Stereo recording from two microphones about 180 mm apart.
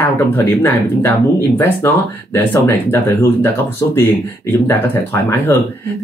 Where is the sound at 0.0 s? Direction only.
10° left (ahead or behind).